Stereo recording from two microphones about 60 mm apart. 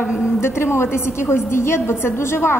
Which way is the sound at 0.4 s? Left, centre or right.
Left.